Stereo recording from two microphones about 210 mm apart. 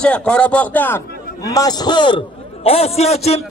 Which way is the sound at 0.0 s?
5° left (ahead or behind).